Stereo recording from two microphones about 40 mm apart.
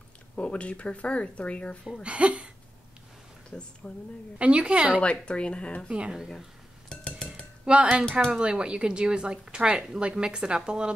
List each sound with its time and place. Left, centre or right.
0.4 s speech: left
2.0 s a woman's voice: right
3.4 s speech: left
4.4 s a woman's voice: right
5.0 s speech: left
5.9 s speech: right
7.6 s speech: right